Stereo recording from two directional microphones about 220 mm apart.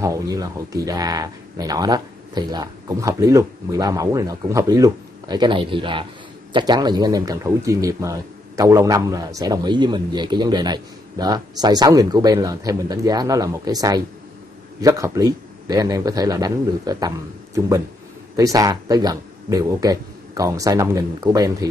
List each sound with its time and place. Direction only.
0.0 s speech: 15° right (ahead or behind)
18.3 s speech: 15° right (ahead or behind)